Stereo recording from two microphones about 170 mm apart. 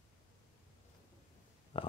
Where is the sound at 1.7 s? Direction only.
35° left (ahead or behind).